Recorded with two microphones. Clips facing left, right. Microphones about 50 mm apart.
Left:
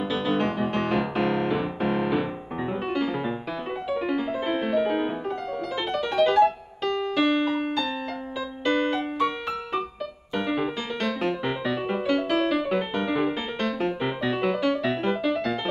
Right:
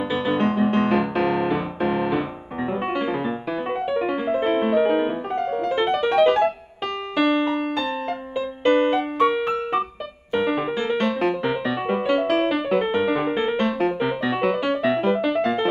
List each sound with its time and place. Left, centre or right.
0.1 s music: centre
0.5 s music: right
0.9 s music: centre
2.9 s music: centre
8.6 s music: right